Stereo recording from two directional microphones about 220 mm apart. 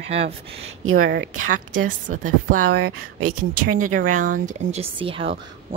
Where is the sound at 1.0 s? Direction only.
50° right (ahead or behind).